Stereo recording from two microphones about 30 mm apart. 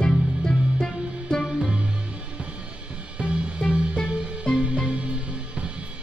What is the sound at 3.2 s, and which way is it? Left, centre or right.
Music, right.